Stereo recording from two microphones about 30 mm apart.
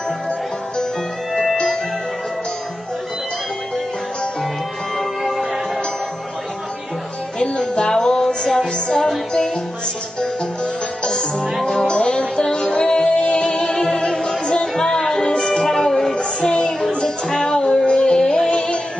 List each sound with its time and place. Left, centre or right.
1.3 s music: centre
5.2 s music: centre
7.3 s music: left
10.2 s music: left
13.7 s music: centre
15.3 s music: left
16.3 s music: left